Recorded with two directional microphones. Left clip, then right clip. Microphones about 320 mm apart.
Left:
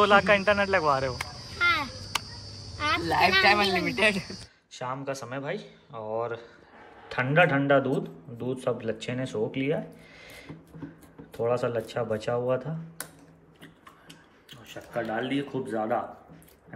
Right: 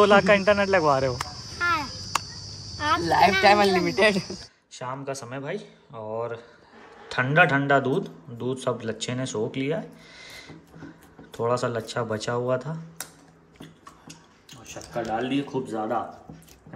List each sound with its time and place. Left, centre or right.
0.0 s speech: centre
3.0 s speech: right
4.7 s a man's voice: centre
14.7 s speech: centre